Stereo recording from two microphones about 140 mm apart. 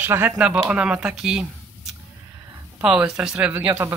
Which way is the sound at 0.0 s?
15° right (ahead or behind).